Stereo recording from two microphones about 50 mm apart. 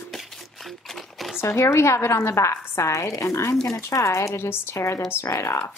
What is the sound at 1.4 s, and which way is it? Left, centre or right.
Speech, left.